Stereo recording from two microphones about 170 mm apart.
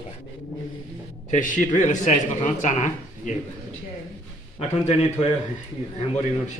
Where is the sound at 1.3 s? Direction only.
50° left (ahead or behind).